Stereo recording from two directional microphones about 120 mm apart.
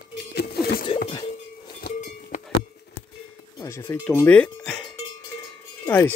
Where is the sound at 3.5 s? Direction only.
20° left (ahead or behind).